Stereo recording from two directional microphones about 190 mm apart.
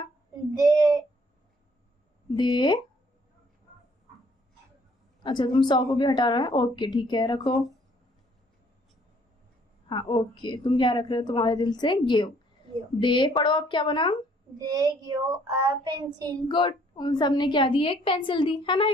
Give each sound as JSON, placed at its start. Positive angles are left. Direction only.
{"t": 0.6, "sound": "a child's voice", "side_deg": -20}
{"t": 2.3, "sound": "a woman's voice", "side_deg": 25}
{"t": 5.2, "sound": "a woman's voice", "side_deg": 25}
{"t": 9.8, "sound": "a woman's voice", "side_deg": 25}
{"t": 13.0, "sound": "a woman's voice", "side_deg": 25}
{"t": 14.6, "sound": "a child's voice", "side_deg": -20}
{"t": 16.4, "sound": "a woman's voice", "side_deg": 25}